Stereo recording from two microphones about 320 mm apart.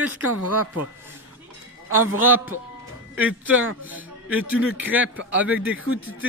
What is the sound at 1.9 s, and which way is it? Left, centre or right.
Speech, right.